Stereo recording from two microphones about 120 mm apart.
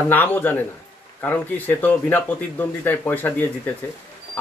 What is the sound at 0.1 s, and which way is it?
Speech, 15° left (ahead or behind).